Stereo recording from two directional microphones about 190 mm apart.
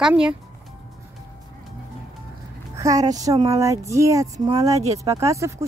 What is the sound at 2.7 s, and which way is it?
Speech, 15° right (ahead or behind).